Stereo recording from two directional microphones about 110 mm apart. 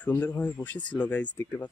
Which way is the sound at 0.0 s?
15° left (ahead or behind).